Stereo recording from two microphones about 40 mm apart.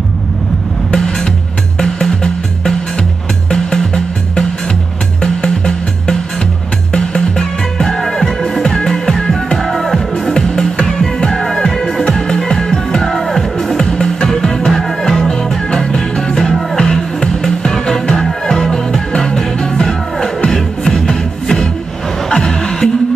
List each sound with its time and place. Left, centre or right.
0.9 s music: centre
7.8 s music: centre